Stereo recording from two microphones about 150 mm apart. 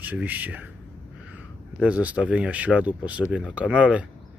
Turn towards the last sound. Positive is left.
turn(degrees=-10)  # may be behind; listen again after turning